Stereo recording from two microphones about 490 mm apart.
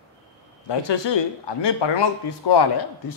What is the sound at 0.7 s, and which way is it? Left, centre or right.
A man's voice, left.